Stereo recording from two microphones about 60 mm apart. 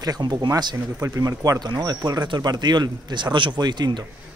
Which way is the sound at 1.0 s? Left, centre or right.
Right.